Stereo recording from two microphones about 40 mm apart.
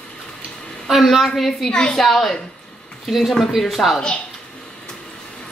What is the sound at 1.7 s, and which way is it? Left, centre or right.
Speech, left.